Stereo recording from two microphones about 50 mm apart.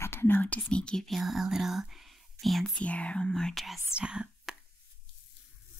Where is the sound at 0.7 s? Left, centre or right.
Centre.